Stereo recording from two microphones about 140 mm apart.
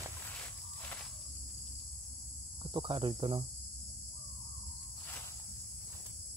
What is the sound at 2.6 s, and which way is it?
Cricket, 35° right (ahead or behind).